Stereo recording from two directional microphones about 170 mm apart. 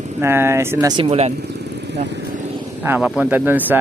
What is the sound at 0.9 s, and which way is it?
Speech, 35° right (ahead or behind).